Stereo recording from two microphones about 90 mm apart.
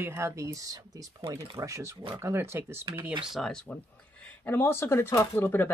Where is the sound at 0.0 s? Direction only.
30° right (ahead or behind).